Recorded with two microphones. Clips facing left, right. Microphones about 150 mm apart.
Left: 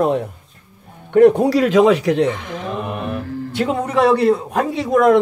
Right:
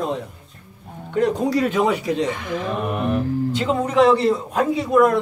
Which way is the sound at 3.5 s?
65° left (ahead or behind).